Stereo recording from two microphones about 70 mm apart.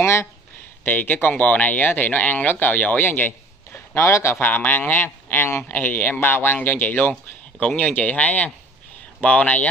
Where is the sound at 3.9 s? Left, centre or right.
Left.